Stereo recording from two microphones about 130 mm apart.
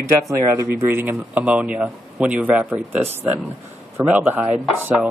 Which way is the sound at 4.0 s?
15° right (ahead or behind).